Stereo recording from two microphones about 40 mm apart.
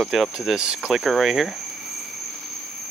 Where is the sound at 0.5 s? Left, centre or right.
Centre.